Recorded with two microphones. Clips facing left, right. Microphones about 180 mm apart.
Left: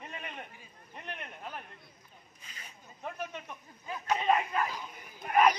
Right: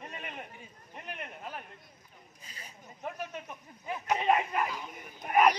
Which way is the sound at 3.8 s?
15° right (ahead or behind).